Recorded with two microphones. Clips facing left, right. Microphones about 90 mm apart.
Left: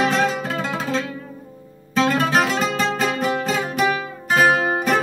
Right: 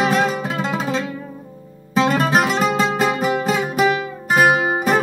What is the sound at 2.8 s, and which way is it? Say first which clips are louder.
Music: right 3 dB; 15° right (ahead or behind).